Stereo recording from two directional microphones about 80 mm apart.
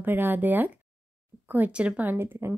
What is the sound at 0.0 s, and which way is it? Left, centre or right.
Speech, right.